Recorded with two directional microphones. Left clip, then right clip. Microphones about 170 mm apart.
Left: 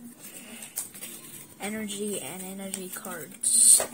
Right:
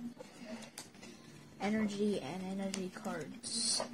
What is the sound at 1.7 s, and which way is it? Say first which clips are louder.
Speech: left 2 dB; 15° left (ahead or behind).